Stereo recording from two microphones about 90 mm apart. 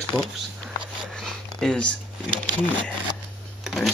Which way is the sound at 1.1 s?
10° left (ahead or behind).